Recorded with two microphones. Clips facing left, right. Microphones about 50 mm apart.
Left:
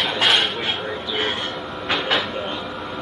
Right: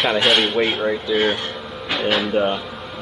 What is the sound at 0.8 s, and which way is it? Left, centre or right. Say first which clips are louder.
Speech: right 6 dB; right.